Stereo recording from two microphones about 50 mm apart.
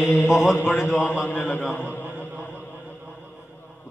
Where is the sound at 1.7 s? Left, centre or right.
Left.